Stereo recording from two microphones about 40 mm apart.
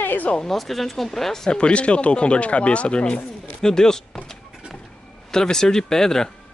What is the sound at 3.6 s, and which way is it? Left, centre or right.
Speech, centre.